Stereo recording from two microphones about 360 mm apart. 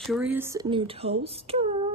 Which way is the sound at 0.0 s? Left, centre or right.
Centre.